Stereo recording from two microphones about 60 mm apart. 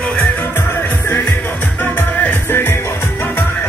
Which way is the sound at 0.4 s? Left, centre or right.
Left.